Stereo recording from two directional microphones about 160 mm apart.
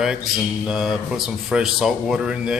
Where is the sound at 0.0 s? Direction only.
5° right (ahead or behind).